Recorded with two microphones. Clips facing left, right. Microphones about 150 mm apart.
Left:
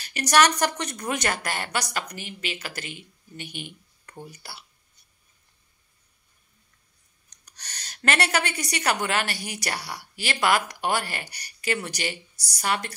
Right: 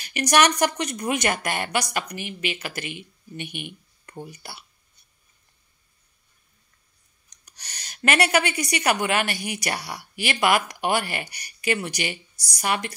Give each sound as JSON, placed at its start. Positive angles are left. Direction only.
{"t": 0.0, "sound": "speech", "side_deg": -15}
{"t": 7.4, "sound": "speech", "side_deg": -10}